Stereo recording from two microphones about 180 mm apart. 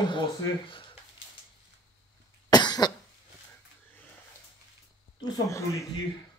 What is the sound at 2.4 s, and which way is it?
Cough, 25° left (ahead or behind).